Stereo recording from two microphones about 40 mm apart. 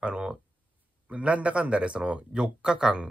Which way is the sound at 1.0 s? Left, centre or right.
Right.